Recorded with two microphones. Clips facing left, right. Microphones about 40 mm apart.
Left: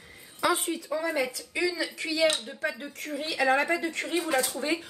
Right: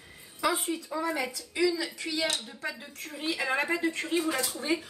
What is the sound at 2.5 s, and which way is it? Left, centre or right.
Speech, left.